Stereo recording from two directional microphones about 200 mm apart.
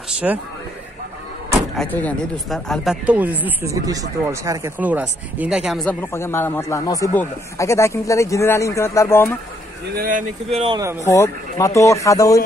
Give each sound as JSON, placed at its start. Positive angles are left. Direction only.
{"t": 0.2, "sound": "speech", "side_deg": -5}
{"t": 1.8, "sound": "speech", "side_deg": 10}
{"t": 6.1, "sound": "speech", "side_deg": 10}
{"t": 10.5, "sound": "speech", "side_deg": -30}
{"t": 11.1, "sound": "speech", "side_deg": 15}